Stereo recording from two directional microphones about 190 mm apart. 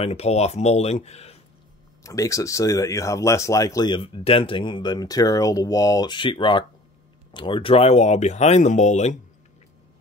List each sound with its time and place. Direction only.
0.0 s speech: 35° left (ahead or behind)
2.0 s speech: 15° left (ahead or behind); by 9.2 s 40° left (ahead or behind)